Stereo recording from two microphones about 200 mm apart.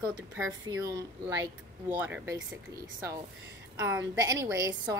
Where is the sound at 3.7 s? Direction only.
15° right (ahead or behind).